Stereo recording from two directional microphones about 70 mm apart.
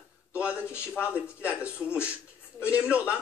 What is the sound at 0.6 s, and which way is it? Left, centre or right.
Speech, left.